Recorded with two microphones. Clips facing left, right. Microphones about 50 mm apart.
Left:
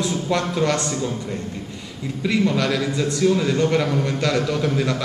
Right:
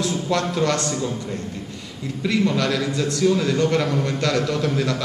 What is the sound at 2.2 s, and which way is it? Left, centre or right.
A man's voice, centre.